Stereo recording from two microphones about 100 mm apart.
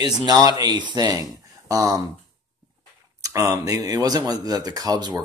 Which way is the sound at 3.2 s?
35° right (ahead or behind).